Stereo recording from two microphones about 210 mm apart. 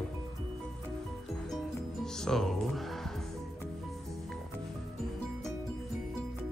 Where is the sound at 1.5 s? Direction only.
Centre (ahead or behind).